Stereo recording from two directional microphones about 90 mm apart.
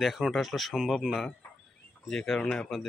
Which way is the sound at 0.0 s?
Centre (ahead or behind).